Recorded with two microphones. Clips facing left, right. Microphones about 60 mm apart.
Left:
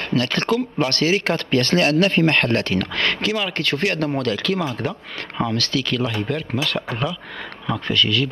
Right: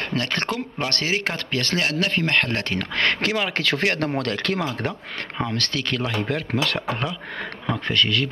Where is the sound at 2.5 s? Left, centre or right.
Right.